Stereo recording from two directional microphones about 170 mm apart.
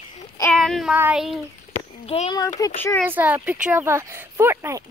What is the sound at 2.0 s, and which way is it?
Speech, 40° left (ahead or behind).